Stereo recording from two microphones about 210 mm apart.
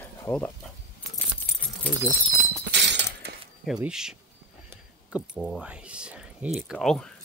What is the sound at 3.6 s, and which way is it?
Speech, 5° right (ahead or behind).